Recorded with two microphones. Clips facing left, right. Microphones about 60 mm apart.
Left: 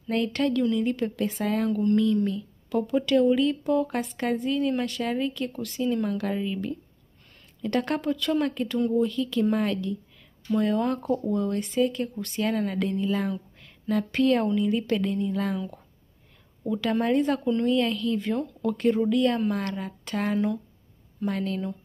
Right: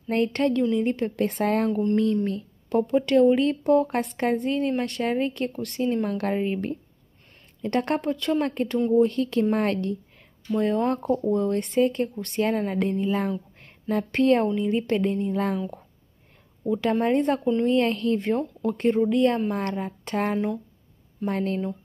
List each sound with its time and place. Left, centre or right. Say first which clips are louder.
0.1 s speech: right 2 dB; right
1.2 s speech: right 4 dB; right
1.7 s speech: even; right
2.0 s speech: even; right
3.3 s speech: right 3 dB; right
9.0 s speech: right 3 dB; right
10.6 s speech: right 3 dB; right
16.6 s speech: right 2 dB; right
17.7 s speech: right 3 dB; right